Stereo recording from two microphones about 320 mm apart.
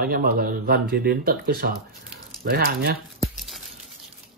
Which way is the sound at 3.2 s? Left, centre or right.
Centre.